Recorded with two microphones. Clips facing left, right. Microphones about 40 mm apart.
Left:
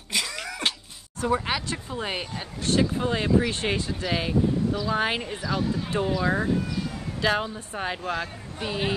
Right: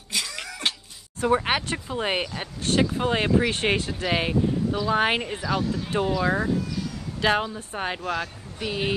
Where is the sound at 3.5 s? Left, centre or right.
Right.